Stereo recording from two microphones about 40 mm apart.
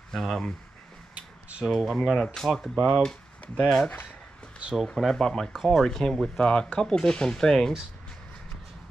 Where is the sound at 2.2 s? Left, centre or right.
Centre.